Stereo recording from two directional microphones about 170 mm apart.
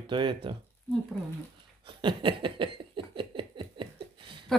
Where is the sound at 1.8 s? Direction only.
30° right (ahead or behind).